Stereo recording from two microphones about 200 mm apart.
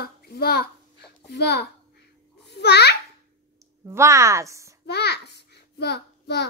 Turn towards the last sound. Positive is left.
turn(degrees=55)  # may be behind; listen again after turning